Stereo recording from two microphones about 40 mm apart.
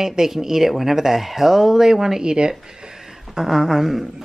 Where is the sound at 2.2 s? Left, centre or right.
Right.